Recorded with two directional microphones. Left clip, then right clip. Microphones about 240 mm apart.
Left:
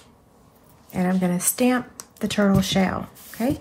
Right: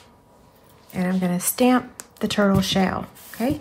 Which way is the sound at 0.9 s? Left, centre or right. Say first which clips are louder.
Left 1 dB; centre.